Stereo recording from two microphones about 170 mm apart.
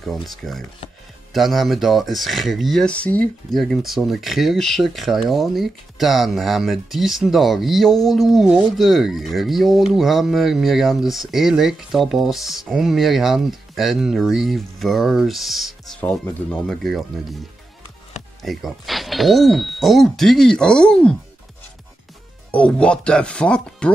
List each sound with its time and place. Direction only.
0.0 s speech: centre (ahead or behind)
18.4 s speech: centre (ahead or behind)
22.5 s speech: 5° left (ahead or behind)